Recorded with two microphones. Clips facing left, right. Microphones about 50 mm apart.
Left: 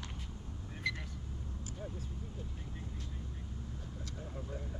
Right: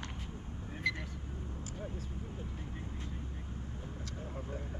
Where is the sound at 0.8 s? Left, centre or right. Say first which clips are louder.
Right 3 dB; centre.